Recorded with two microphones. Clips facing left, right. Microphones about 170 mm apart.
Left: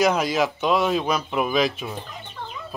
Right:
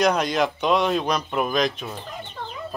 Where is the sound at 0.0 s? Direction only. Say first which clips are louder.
Even; 5° left (ahead or behind).